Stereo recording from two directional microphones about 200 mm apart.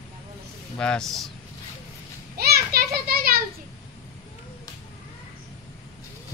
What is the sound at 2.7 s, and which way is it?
Children playing, 50° right (ahead or behind).